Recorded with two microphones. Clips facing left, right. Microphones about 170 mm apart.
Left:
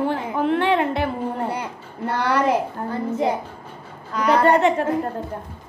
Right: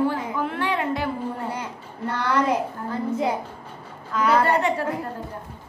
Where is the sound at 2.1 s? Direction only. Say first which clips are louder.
Left 3 dB; 65° left (ahead or behind).